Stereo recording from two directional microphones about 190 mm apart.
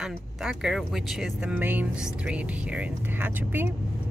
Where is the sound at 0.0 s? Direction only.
Centre (ahead or behind).